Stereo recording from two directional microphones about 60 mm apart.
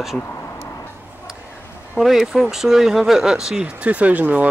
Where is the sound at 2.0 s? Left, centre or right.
Centre.